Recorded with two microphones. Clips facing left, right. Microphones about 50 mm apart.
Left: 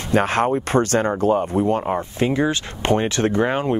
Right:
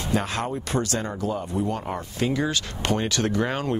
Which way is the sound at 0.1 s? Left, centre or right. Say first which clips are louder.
Left 9 dB; left.